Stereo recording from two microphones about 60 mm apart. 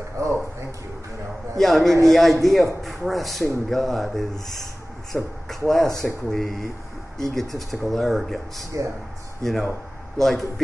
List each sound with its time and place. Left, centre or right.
0.2 s a sound: right
1.6 s a man's voice: centre
5.1 s speech: right
5.7 s speech: centre